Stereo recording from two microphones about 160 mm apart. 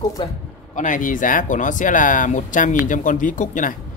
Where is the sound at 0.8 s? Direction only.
55° left (ahead or behind).